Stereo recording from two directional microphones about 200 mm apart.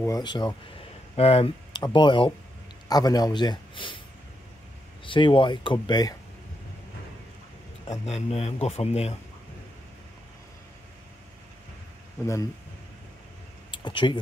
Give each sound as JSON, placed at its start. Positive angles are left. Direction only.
{"t": 0.0, "sound": "a man's voice", "side_deg": 20}
{"t": 5.0, "sound": "speech", "side_deg": 25}
{"t": 8.0, "sound": "speech", "side_deg": 30}
{"t": 13.7, "sound": "a sound", "side_deg": 25}